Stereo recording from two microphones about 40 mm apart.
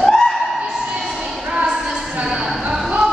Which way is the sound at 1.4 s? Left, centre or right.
Right.